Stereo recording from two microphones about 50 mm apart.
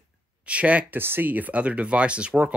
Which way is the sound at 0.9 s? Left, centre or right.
Right.